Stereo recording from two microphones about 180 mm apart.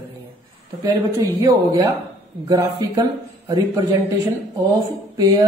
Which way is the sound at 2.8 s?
20° right (ahead or behind).